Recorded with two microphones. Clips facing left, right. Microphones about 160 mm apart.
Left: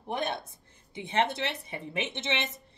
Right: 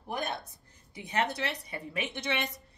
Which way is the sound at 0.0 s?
25° left (ahead or behind).